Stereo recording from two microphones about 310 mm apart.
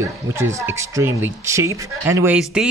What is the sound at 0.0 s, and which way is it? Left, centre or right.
Speech, centre.